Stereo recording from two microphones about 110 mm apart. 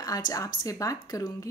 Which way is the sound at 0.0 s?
35° left (ahead or behind).